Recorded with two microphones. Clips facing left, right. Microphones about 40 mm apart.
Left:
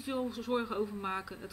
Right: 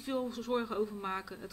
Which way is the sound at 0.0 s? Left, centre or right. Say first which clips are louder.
Even; centre.